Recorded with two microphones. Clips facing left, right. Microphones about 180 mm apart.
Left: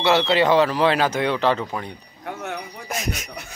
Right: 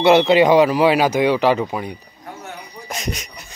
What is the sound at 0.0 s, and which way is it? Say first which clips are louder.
Speech: right 6 dB; 20° right (ahead or behind).